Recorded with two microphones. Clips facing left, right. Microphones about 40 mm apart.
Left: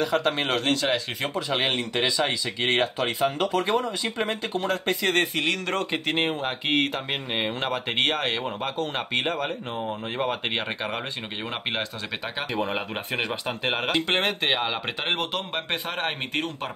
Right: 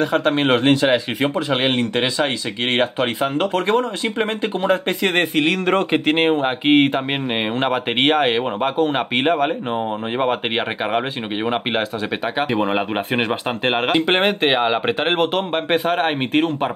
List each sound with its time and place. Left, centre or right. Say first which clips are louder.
0.0 s speech: right 6 dB; right
4.2 s speech: right 7 dB; right